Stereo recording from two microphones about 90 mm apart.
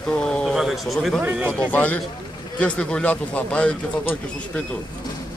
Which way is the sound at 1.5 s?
15° left (ahead or behind).